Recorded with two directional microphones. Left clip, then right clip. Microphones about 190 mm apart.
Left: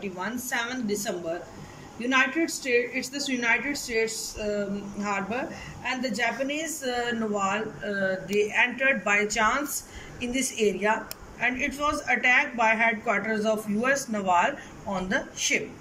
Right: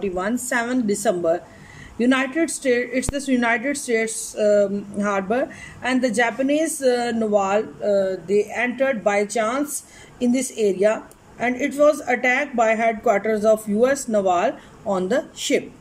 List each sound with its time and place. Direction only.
0.0 s speech: 40° right (ahead or behind)